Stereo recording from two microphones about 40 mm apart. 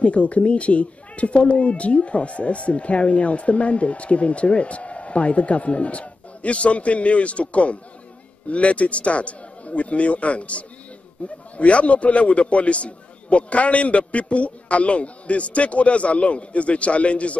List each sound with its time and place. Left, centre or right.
0.0 s speech: left